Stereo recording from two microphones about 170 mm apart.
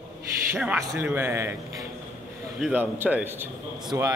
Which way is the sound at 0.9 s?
10° right (ahead or behind).